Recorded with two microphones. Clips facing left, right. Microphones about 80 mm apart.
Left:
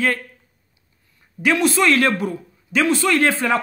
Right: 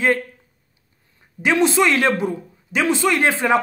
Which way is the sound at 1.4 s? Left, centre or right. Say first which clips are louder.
Right 1 dB; right.